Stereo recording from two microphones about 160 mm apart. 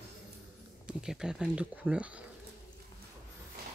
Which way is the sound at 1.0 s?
5° right (ahead or behind).